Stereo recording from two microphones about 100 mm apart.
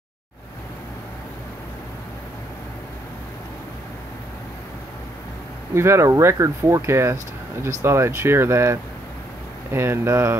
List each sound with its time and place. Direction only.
5.8 s speech: 25° right (ahead or behind)